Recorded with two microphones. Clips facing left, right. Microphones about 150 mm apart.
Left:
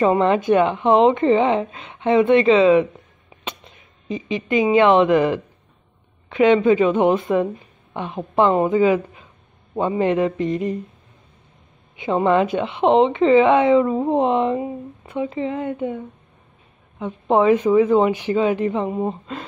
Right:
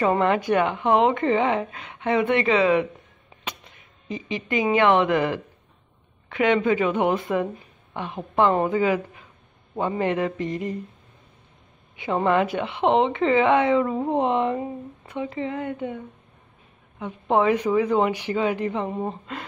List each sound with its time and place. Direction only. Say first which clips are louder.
0.0 s speech: left 4 dB; 20° left (ahead or behind)
12.0 s speech: left 4 dB; 20° left (ahead or behind)
17.0 s speech: left 4 dB; 20° left (ahead or behind)